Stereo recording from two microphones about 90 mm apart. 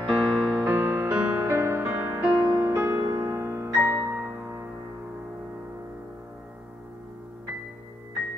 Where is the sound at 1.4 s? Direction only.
30° right (ahead or behind).